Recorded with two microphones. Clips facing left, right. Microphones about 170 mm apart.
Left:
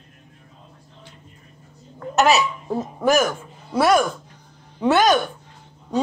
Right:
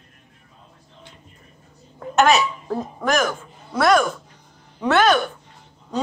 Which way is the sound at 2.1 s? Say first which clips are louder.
Right 1 dB; 5° left (ahead or behind).